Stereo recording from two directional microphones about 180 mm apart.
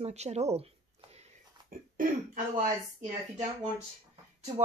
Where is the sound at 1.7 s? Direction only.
50° right (ahead or behind).